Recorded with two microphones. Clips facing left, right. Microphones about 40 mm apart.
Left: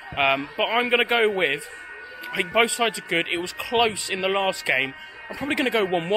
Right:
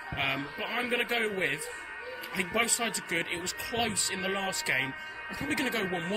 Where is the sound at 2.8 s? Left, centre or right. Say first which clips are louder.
Left 9 dB; left.